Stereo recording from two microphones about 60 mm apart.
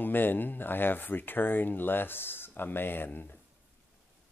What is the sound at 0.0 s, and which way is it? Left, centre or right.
Speech, left.